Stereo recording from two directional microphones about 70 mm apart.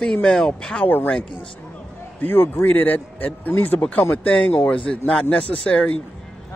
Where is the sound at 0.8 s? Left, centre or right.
Left.